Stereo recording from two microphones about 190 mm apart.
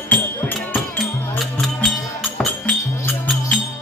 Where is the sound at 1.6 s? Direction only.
Centre (ahead or behind).